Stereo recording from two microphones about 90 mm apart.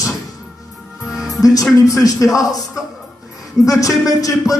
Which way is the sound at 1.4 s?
40° left (ahead or behind).